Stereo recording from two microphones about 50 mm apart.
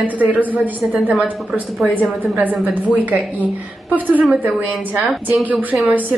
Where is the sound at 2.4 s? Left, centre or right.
Right.